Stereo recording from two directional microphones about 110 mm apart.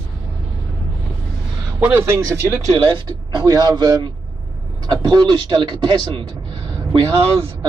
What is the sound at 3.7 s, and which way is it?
A man's voice, 40° right (ahead or behind).